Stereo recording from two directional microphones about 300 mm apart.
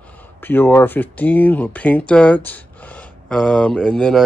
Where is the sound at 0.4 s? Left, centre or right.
Centre.